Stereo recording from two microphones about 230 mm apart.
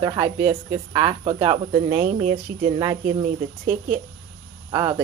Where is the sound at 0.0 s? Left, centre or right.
Centre.